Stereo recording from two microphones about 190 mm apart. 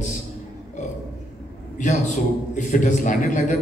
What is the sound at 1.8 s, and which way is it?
A man's voice, 40° left (ahead or behind).